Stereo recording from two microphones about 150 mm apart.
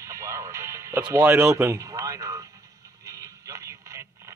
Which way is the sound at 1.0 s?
10° right (ahead or behind).